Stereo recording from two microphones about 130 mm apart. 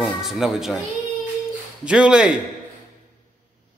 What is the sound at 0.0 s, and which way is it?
Speech, centre (ahead or behind).